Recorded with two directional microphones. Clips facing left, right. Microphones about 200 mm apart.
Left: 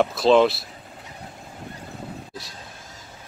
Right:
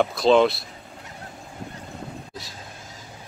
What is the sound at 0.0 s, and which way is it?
Speech, centre (ahead or behind).